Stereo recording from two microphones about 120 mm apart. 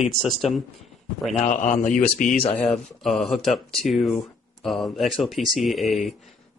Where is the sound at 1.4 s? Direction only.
90° left.